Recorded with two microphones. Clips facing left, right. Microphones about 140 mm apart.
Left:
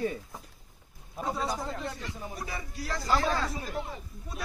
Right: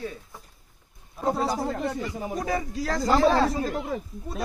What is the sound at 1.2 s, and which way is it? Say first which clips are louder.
Speech: right 7 dB; 50° right (ahead or behind).